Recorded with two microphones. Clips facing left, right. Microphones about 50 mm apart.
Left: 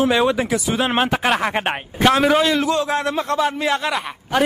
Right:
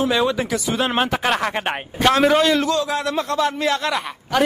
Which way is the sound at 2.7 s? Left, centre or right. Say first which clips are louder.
Left 1 dB; left.